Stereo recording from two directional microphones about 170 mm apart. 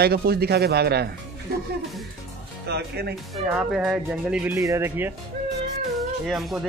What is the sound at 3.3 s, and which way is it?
Speech, 5° right (ahead or behind).